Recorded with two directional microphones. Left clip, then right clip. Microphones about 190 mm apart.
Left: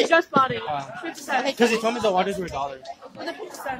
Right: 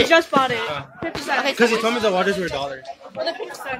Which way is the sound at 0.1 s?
45° right (ahead or behind).